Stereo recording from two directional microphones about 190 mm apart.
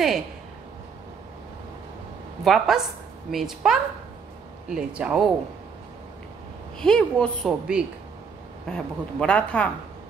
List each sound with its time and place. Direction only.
2.4 s speech: centre (ahead or behind)
6.8 s speech: 5° left (ahead or behind)